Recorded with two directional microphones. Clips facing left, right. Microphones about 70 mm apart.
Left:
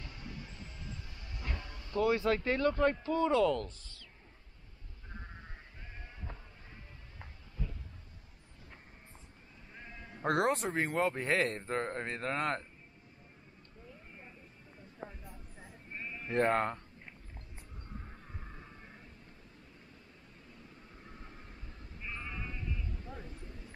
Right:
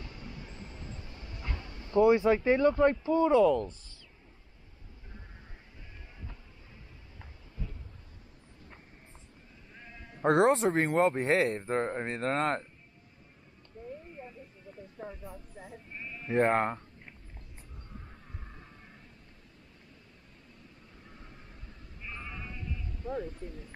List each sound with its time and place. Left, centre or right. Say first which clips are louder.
0.0 s bow-wow: right 2 dB; centre
10.2 s speech: right 7 dB; right
12.2 s speech: right 5 dB; right
15.9 s sheep: left 2 dB; centre
16.3 s speech: right 4 dB; right
18.0 s a sound: even; centre
22.0 s sheep: even; centre
23.0 s speech: right 12 dB; right